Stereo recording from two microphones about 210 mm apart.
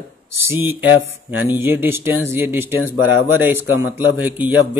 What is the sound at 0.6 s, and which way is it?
Speech, 10° right (ahead or behind).